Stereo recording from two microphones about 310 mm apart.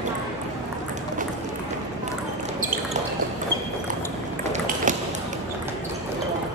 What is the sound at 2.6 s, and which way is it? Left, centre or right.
Basketball bounce, right.